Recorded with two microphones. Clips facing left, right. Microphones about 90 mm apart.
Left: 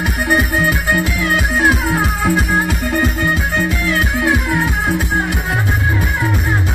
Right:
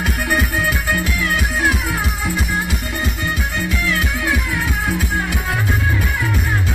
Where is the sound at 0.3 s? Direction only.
35° left (ahead or behind).